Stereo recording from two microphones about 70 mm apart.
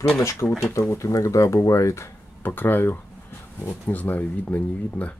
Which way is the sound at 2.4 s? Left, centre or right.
Left.